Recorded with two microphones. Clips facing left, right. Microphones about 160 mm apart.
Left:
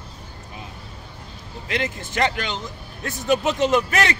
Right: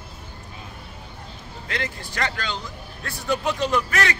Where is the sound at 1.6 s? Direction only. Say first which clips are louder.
Left 4 dB; 20° left (ahead or behind).